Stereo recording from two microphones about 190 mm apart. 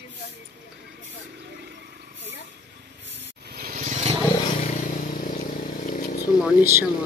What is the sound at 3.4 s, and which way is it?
Vehicle, 50° right (ahead or behind).